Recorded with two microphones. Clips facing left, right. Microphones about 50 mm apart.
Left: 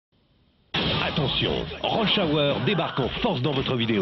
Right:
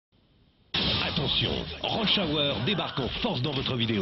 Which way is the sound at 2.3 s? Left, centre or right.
Centre.